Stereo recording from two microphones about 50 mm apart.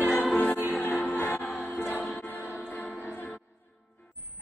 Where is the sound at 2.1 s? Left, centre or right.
Left.